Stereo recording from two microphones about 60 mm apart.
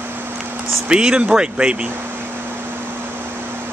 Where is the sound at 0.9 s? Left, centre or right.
Centre.